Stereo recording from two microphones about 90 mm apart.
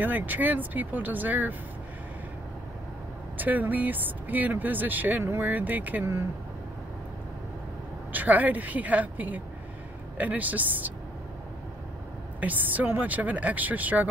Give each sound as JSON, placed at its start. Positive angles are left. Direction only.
{"t": 0.0, "sound": "speech", "side_deg": -20}
{"t": 3.3, "sound": "speech", "side_deg": -20}
{"t": 8.1, "sound": "speech", "side_deg": -20}
{"t": 12.4, "sound": "speech", "side_deg": -20}